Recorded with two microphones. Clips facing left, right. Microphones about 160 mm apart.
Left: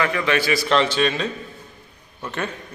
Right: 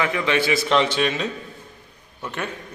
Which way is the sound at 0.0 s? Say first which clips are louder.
Even; 20° right (ahead or behind).